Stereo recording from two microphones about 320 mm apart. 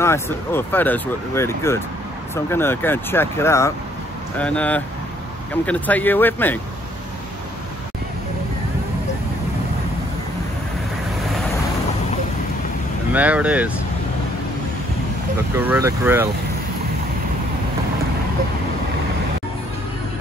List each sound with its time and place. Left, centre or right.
0.0 s speech: centre
13.1 s speech: centre
15.5 s speech: centre